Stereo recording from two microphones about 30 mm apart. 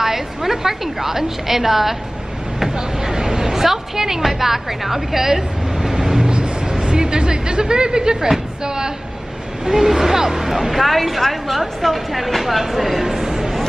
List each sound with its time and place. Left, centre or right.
0.0 s a woman's voice: centre
6.2 s vehicle: right
6.7 s speech: right
9.7 s a woman's voice: centre
10.9 s a woman's voice: centre
13.0 s chopping: centre